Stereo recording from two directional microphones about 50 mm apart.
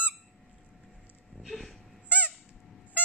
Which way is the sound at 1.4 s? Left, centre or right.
Centre.